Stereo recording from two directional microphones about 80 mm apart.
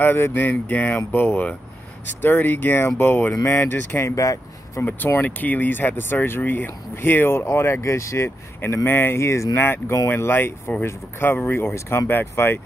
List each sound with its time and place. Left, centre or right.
0.0 s speech: left
4.0 s speech: left
4.8 s speech: left
8.8 s speech: left